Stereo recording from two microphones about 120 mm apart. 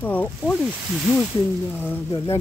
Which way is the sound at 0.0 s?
15° left (ahead or behind).